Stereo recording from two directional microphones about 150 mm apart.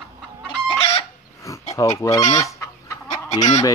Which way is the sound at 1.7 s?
20° left (ahead or behind).